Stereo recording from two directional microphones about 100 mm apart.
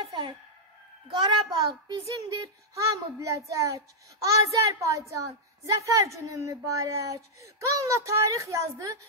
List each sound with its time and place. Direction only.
0.0 s music: 55° right (ahead or behind)
1.1 s a child's voice: 45° right (ahead or behind)
2.7 s a child's voice: 30° right (ahead or behind)